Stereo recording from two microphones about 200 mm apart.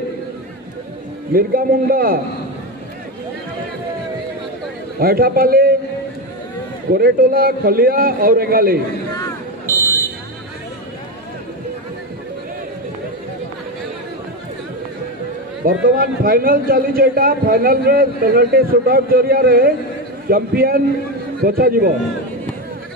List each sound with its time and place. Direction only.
1.3 s a man's voice: 45° right (ahead or behind)
4.9 s a man's voice: 50° right (ahead or behind)
6.9 s a man's voice: 45° right (ahead or behind)
15.6 s a man's voice: 45° right (ahead or behind)